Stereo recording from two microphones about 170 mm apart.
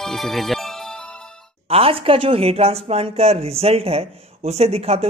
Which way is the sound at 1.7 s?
35° right (ahead or behind).